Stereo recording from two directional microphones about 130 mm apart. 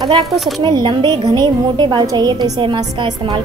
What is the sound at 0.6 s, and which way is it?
A woman's voice, 35° right (ahead or behind).